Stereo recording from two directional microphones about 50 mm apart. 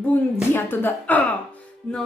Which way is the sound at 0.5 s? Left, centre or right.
Left.